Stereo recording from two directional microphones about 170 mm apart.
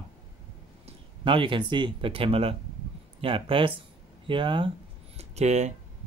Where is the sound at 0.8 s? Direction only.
30° right (ahead or behind).